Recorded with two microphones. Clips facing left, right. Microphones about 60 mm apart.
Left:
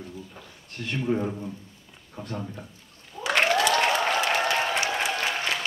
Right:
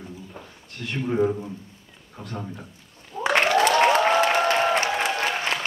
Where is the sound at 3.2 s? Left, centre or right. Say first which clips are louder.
Right 4 dB; right.